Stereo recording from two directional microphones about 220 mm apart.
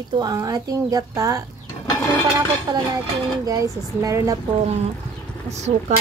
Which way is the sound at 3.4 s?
15° right (ahead or behind).